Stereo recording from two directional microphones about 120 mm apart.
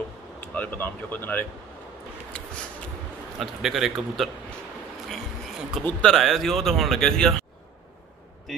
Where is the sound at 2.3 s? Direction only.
10° left (ahead or behind).